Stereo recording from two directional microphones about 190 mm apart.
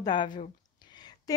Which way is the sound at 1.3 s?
20° left (ahead or behind).